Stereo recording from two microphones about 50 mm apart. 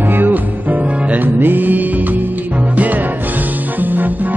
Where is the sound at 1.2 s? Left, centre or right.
Right.